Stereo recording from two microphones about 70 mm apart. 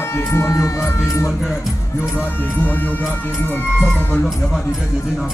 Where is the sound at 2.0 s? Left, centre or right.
Left.